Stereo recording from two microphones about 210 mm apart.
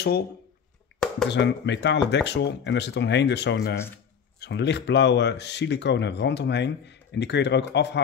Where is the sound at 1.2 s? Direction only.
55° left (ahead or behind).